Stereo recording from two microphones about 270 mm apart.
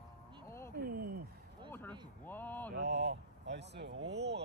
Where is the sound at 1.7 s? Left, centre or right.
Centre.